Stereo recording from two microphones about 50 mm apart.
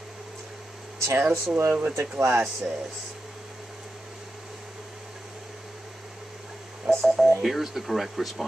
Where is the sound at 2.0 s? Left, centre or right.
Right.